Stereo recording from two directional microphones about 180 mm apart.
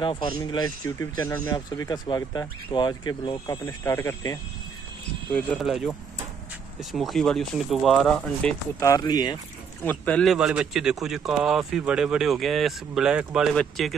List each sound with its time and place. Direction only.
0.0 s speech: 25° left (ahead or behind)
5.3 s a man's voice: 5° left (ahead or behind)
8.7 s speech: 20° left (ahead or behind)
9.8 s a man's voice: 5° left (ahead or behind)